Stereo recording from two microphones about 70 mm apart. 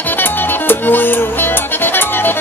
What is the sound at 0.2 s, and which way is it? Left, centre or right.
Music, left.